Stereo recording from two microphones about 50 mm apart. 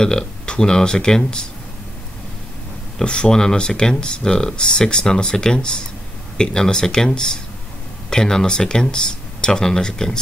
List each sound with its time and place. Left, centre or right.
0.0 s speech: centre
3.0 s speech: centre